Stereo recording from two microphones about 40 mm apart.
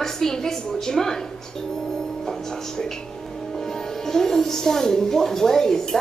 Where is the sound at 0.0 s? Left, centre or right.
Centre.